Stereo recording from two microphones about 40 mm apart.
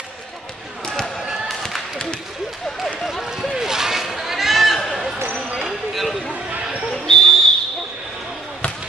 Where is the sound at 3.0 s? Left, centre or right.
Centre.